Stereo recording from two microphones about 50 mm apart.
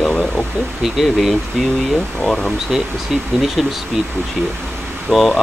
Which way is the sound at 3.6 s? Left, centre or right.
Centre.